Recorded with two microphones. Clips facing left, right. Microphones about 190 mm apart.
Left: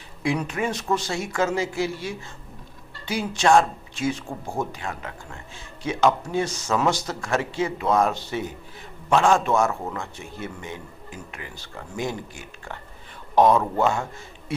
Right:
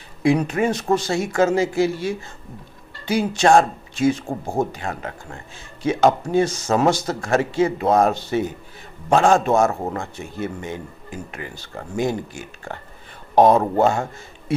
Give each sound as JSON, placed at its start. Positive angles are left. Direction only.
{"t": 0.2, "sound": "speech", "side_deg": -45}
{"t": 3.1, "sound": "speech", "side_deg": -45}